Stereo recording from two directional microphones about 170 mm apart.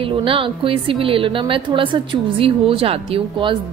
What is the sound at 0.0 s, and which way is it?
A woman's voice, 30° right (ahead or behind).